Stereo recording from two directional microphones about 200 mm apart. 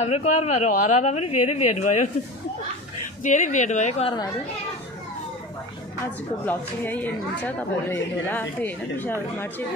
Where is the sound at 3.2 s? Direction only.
40° left (ahead or behind).